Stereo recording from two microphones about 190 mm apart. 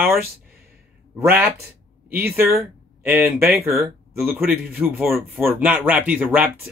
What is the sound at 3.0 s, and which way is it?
Speech, 10° right (ahead or behind).